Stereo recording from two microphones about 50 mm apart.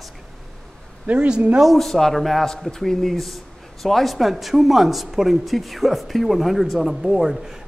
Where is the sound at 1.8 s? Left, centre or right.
Centre.